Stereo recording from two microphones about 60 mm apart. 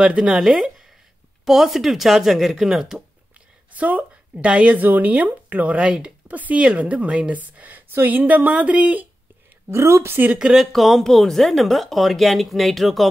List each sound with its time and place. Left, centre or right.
0.0 s speech: centre
3.7 s speech: right
9.7 s a woman's voice: right
10.4 s speech: centre